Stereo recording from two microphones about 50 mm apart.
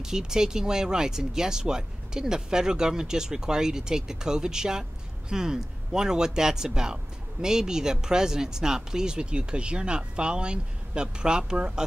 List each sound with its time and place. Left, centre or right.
0.0 s speech: centre